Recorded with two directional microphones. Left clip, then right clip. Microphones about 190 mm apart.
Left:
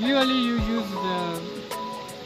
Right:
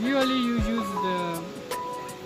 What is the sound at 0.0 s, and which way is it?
Music, 35° left (ahead or behind).